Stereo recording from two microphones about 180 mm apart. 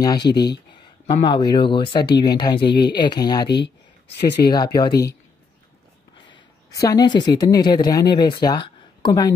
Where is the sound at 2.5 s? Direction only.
65° left (ahead or behind).